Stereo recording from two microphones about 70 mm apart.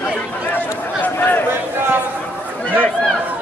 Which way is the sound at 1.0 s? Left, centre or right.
Left.